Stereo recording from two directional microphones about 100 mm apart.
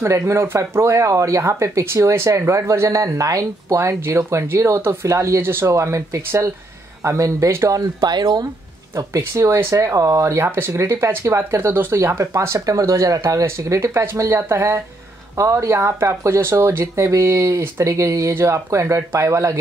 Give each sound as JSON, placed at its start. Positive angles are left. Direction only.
{"t": 0.3, "sound": "speech", "side_deg": -30}
{"t": 8.0, "sound": "speech", "side_deg": -45}
{"t": 8.9, "sound": "speech", "side_deg": -25}